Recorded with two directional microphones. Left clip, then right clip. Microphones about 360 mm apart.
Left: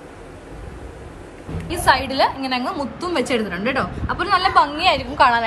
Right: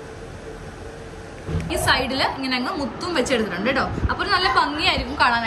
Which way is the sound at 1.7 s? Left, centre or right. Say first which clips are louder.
Left 3 dB; centre.